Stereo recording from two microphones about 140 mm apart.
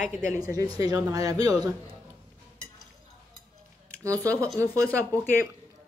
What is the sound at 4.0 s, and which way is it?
Speech, 20° right (ahead or behind).